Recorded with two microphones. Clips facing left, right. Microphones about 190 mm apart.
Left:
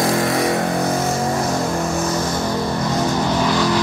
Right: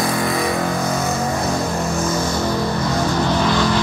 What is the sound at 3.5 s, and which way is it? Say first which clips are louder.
Music: even; 10° left (ahead or behind).